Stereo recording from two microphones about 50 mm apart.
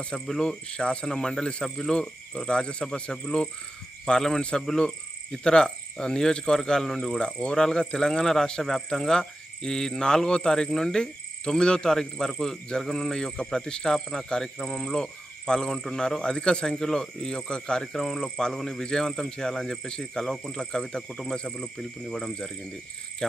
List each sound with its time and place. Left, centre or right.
0.0 s speech: centre
17.9 s speech: centre